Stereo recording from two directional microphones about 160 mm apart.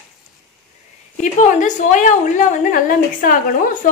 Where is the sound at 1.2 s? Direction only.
50° left (ahead or behind).